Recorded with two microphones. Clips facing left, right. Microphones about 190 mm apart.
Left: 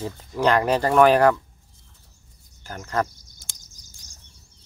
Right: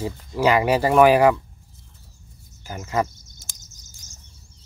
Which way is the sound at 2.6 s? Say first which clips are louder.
Right 2 dB; 5° right (ahead or behind).